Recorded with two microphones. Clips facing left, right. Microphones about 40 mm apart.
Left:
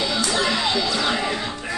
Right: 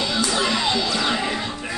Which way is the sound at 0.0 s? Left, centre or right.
Centre.